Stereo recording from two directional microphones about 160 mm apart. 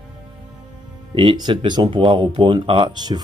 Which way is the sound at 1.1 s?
30° right (ahead or behind).